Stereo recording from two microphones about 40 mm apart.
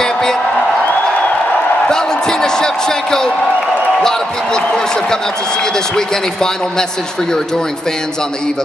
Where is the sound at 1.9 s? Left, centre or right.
Centre.